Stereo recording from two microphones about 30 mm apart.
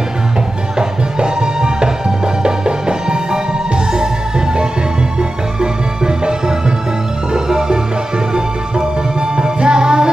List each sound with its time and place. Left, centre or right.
0.7 s music: right
5.6 s music: right
7.3 s music: right
9.4 s music: right